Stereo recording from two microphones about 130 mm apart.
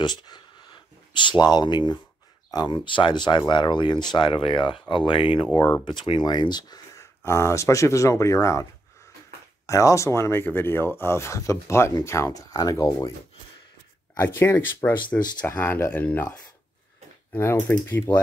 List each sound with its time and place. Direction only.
0.0 s speech: 35° left (ahead or behind)
7.0 s speech: 20° left (ahead or behind)
9.7 s speech: 25° left (ahead or behind)
14.2 s speech: 20° left (ahead or behind)